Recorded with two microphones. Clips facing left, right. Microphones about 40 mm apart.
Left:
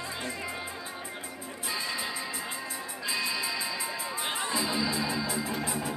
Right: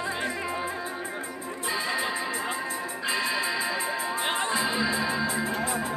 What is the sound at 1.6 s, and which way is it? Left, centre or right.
Music, right.